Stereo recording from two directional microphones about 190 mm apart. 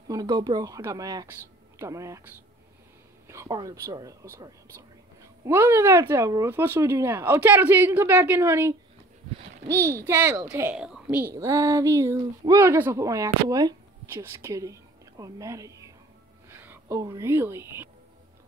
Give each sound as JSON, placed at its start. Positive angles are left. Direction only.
{"t": 0.1, "sound": "a woman's voice", "side_deg": -20}